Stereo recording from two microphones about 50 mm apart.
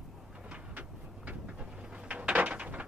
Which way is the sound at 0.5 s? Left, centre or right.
Right.